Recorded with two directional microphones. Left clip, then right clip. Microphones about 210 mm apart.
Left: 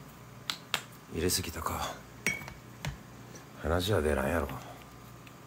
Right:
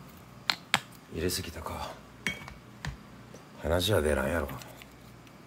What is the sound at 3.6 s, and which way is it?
Speech, 5° right (ahead or behind).